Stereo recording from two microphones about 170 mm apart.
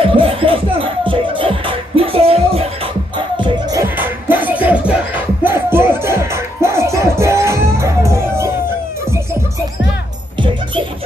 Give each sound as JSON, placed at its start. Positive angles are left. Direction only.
{"t": 0.0, "sound": "music", "side_deg": -30}
{"t": 3.8, "sound": "music", "side_deg": -10}